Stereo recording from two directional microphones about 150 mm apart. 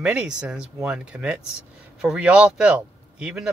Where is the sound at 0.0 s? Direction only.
5° right (ahead or behind).